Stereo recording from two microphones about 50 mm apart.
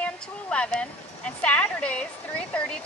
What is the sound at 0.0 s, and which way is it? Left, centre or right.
Speech, left.